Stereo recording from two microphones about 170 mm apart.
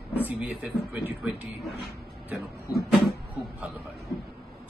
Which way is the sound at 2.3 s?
Centre (ahead or behind).